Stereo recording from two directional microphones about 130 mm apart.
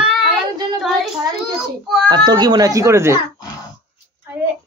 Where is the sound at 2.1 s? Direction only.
35° right (ahead or behind).